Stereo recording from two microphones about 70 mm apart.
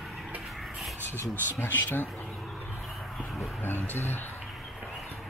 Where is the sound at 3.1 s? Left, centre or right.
Centre.